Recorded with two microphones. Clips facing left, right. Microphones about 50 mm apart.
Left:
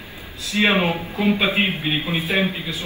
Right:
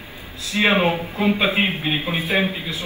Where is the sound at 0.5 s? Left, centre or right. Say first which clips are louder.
Right 1 dB; right.